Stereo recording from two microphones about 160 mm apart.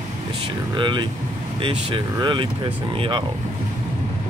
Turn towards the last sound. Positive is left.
turn(degrees=-35)  # may be behind; listen again after turning